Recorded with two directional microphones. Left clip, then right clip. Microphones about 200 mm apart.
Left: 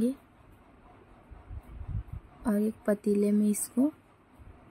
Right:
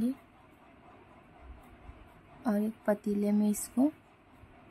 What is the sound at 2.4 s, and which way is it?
Speech, 10° left (ahead or behind).